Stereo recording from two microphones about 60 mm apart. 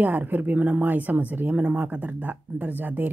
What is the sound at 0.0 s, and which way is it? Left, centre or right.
Speech, right.